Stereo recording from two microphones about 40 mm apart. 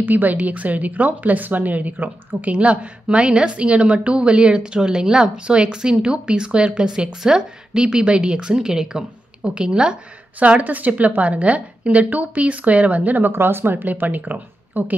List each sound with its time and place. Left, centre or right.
0.0 s a woman's voice: right
2.5 s a woman's voice: right
10.4 s a woman's voice: right
13.3 s speech: right